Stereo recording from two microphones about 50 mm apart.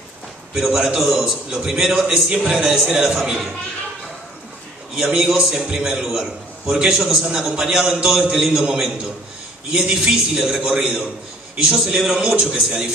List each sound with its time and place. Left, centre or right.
0.7 s a man's voice: centre
2.2 s a man's voice: centre
2.5 s a man's voice: centre
5.0 s a man's voice: centre